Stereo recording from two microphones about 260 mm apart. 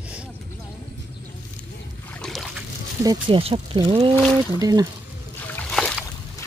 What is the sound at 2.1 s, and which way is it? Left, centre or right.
Boat, centre.